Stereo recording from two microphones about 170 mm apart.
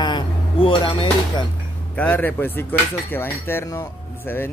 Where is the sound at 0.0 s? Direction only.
30° left (ahead or behind).